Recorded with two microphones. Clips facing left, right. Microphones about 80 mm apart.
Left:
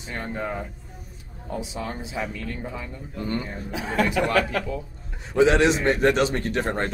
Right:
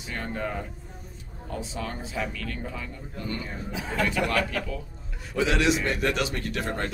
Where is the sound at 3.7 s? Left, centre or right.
Left.